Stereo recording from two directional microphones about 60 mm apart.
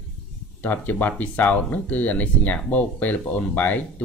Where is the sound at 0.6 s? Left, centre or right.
Left.